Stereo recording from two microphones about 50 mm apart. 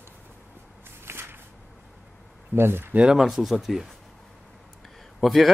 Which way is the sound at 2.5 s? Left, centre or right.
Right.